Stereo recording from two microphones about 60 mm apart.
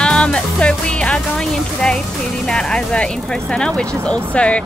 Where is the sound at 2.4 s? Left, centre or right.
Centre.